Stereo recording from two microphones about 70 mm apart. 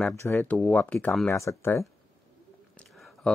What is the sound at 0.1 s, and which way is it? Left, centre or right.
Speech, left.